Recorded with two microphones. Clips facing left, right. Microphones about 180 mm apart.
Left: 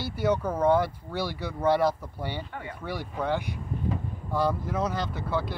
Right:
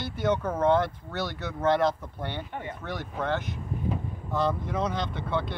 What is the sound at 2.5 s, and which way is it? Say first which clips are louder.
Speech: right 2 dB; 25° right (ahead or behind).